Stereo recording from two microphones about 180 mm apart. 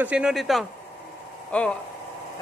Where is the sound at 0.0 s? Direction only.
5° right (ahead or behind).